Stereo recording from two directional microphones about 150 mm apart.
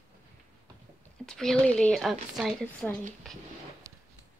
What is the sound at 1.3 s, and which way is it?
A woman's voice, 5° left (ahead or behind).